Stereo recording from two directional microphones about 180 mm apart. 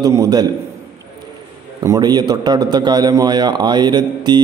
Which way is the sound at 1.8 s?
25° right (ahead or behind).